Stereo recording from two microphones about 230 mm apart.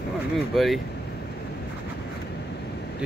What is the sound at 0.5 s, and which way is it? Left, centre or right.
Speech, centre.